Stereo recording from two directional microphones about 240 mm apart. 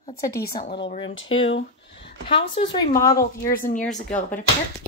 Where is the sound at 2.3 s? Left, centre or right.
Left.